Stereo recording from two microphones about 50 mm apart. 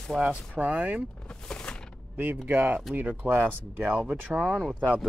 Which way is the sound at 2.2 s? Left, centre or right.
Right.